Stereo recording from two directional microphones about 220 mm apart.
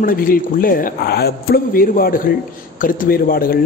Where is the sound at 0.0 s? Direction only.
40° left (ahead or behind).